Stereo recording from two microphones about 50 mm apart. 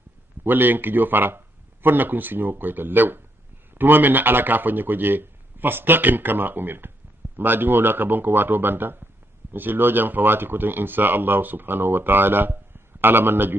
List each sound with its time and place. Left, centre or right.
0.4 s speech: right